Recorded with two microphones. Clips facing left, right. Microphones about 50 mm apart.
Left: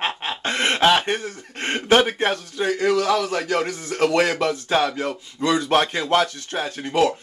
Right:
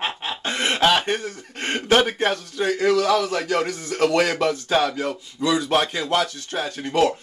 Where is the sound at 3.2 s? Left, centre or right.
Left.